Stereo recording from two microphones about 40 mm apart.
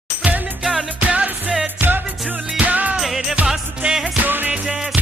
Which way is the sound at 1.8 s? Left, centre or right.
Right.